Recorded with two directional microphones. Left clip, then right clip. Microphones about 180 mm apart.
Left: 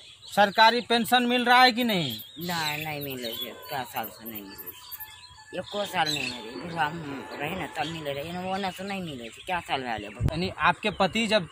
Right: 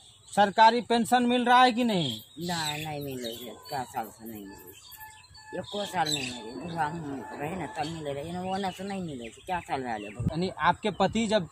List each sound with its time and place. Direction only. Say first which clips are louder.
0.3 s speech: left 1 dB; centre (ahead or behind)
5.5 s speech: left 2 dB; 10° right (ahead or behind)